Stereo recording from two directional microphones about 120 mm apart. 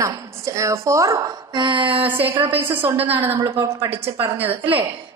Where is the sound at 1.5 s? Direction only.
40° right (ahead or behind).